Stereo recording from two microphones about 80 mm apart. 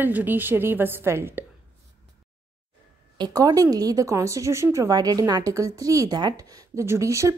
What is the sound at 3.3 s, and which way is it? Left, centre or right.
Speech, right.